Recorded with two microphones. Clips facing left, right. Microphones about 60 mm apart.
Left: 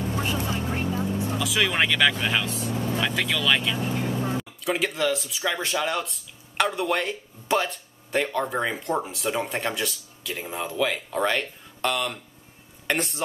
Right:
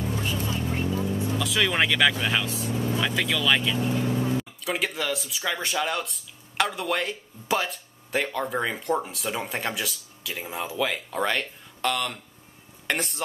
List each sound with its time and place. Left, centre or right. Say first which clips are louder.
0.1 s vehicle: left 2 dB; left
1.4 s speech: even; centre
3.8 s vehicle: right 1 dB; left
4.4 s speech: left 2 dB; centre